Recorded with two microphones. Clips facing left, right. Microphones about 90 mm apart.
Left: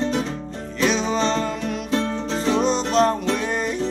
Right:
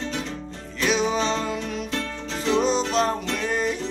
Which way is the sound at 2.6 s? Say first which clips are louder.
Left 3 dB; centre (ahead or behind).